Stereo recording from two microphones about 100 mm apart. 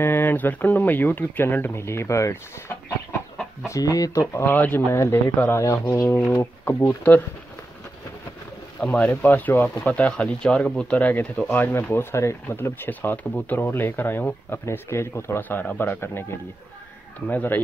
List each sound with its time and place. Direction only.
0.0 s speech: 20° left (ahead or behind); by 4.2 s 35° left (ahead or behind)
4.3 s speech: 25° left (ahead or behind)
8.8 s speech: 10° left (ahead or behind)
9.1 s speech: 20° left (ahead or behind)